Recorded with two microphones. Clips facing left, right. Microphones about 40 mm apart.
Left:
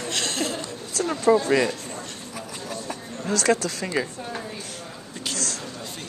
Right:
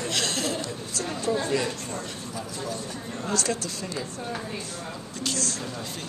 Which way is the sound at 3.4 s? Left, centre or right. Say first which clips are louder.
Left 7 dB; left.